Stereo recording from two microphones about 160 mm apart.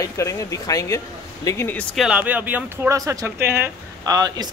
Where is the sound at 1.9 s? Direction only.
5° right (ahead or behind).